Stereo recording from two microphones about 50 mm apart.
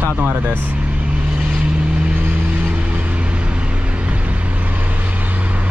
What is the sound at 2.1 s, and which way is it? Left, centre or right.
Vehicle, right.